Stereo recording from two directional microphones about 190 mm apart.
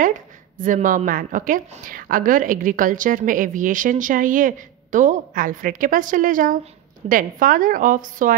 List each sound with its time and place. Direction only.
0.0 s a woman's voice: 45° right (ahead or behind)